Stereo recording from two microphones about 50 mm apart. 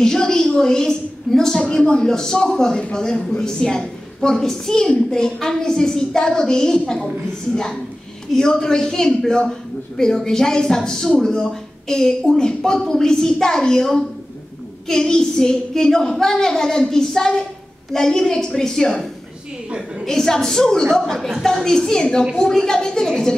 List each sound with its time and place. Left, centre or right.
0.0 s a sound: centre
2.0 s a man's voice: centre
8.4 s a man's voice: centre
20.1 s a man's voice: centre